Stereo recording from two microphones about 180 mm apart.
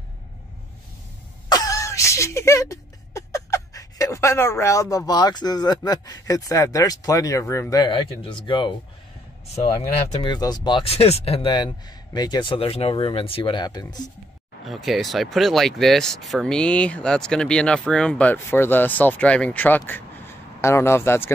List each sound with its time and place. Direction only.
1.5 s a sound: 20° left (ahead or behind)
10.2 s speech: 25° left (ahead or behind)
14.6 s speech: centre (ahead or behind)